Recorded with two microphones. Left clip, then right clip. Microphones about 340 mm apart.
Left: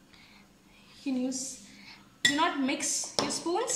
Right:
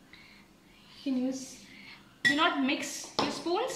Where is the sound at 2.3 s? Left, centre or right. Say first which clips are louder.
Right 1 dB; centre.